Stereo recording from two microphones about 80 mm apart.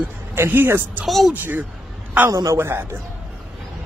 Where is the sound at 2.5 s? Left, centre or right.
Right.